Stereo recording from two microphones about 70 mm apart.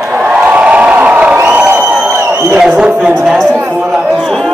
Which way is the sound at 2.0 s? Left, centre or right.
Right.